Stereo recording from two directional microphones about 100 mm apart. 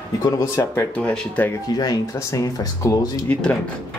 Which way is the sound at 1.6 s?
40° left (ahead or behind).